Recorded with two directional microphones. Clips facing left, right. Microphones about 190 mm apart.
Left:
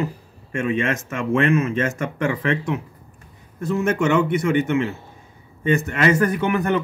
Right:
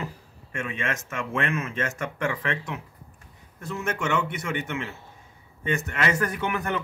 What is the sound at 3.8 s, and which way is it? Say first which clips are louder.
Speech: left 8 dB; 45° left (ahead or behind).